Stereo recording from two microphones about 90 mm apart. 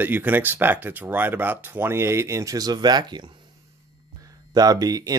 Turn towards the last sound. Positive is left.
turn(degrees=-45)  # may be behind; listen again after turning